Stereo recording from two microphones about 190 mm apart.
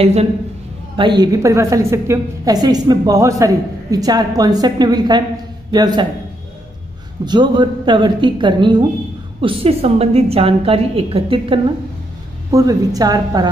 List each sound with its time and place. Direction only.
0.0 s a woman's voice: 30° right (ahead or behind)
7.2 s a woman's voice: 25° right (ahead or behind)